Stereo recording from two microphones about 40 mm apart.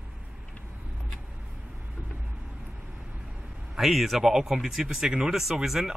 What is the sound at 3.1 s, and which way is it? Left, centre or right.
Vehicle, right.